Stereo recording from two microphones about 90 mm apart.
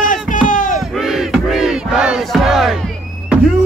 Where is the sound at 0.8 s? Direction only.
5° right (ahead or behind).